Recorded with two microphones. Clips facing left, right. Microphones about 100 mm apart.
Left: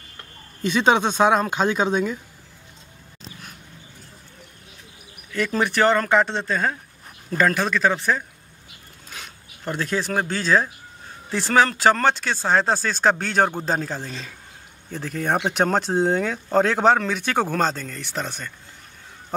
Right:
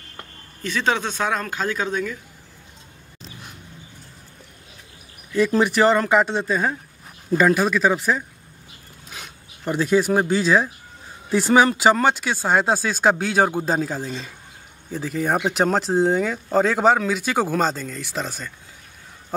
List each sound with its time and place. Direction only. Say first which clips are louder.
0.6 s speech: left 4 dB; 20° left (ahead or behind)
5.3 s speech: right 4 dB; 10° right (ahead or behind)
9.7 s speech: right 6 dB; 10° right (ahead or behind)